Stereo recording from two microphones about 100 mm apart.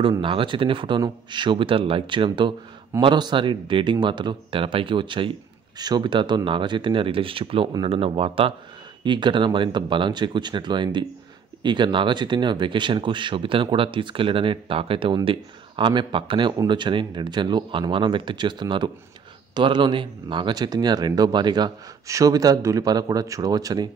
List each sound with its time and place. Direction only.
0.2 s speech: 60° right (ahead or behind)
5.8 s speech: 45° right (ahead or behind); by 8.5 s 70° right (ahead or behind)
9.0 s speech: 50° right (ahead or behind)
22.0 s speech: 35° right (ahead or behind)